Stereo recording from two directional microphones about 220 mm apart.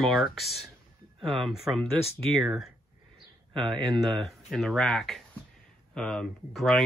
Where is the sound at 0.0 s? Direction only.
Centre (ahead or behind).